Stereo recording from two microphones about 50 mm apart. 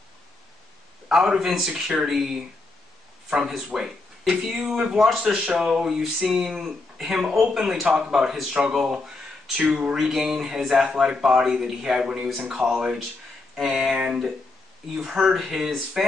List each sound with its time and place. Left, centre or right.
1.0 s a man's voice: centre
13.9 s speech: centre